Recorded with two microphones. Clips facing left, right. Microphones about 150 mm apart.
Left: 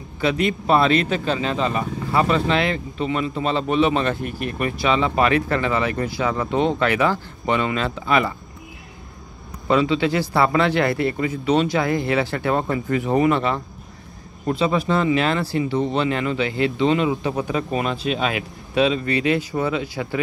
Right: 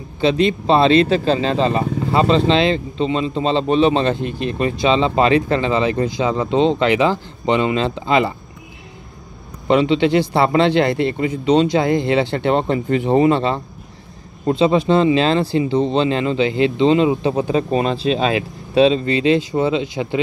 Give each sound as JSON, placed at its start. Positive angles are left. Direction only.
{"t": 0.2, "sound": "speech", "side_deg": -25}
{"t": 9.7, "sound": "speech", "side_deg": -25}